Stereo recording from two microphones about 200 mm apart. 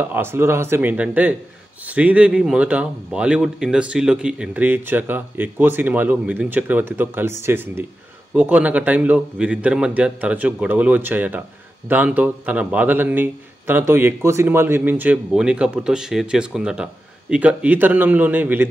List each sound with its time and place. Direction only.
0.0 s a man's voice: 10° right (ahead or behind)